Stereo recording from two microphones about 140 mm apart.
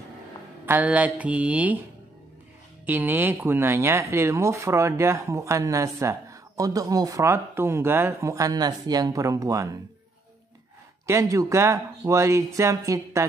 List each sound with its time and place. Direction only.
0.7 s mantra: 10° right (ahead or behind)
2.9 s speech: 15° right (ahead or behind)
11.1 s speech: 25° right (ahead or behind)